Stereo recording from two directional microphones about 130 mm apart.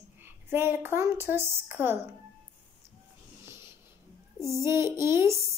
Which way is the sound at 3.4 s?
20° right (ahead or behind).